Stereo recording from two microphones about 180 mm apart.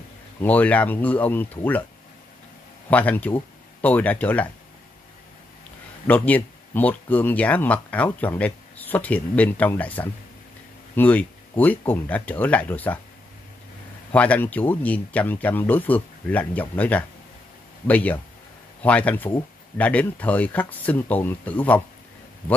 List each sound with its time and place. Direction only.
0.4 s speech: 10° left (ahead or behind)
2.9 s speech: 10° left (ahead or behind)
6.0 s speech: 10° left (ahead or behind)
14.1 s speech: 5° left (ahead or behind)